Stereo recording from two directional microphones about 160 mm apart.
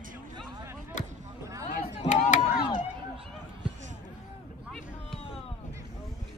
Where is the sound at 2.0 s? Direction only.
45° left (ahead or behind).